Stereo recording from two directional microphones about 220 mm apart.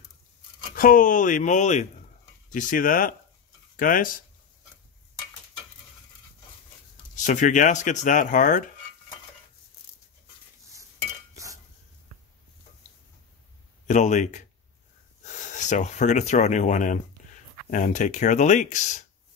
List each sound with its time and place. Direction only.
0.7 s speech: 40° left (ahead or behind)
7.2 s speech: 35° left (ahead or behind)
13.8 s speech: 35° left (ahead or behind)